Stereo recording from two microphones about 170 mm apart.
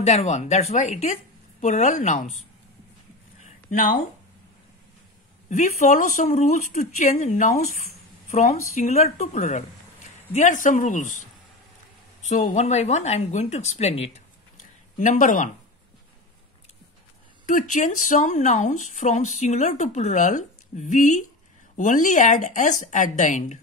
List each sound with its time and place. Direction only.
0.0 s speech: 40° left (ahead or behind)
3.3 s a sound: 45° left (ahead or behind)
5.5 s speech: 45° left (ahead or behind)
12.3 s speech: 45° left (ahead or behind)
14.6 s a sound: 45° left (ahead or behind)
17.5 s speech: 50° left (ahead or behind)